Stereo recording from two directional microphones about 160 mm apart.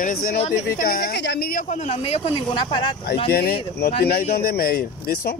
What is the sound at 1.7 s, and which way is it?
Speech, 45° left (ahead or behind).